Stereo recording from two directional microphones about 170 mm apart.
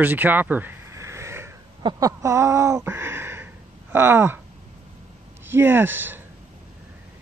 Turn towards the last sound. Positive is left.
turn(degrees=-10)  # may be behind; listen again after turning